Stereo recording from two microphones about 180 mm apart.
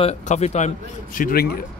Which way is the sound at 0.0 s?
40° left (ahead or behind).